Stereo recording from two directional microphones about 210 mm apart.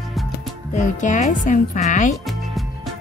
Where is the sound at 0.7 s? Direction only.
35° left (ahead or behind).